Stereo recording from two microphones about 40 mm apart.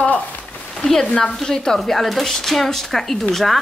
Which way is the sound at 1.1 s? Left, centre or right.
Left.